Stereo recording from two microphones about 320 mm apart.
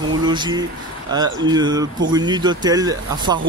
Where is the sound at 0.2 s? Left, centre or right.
Centre.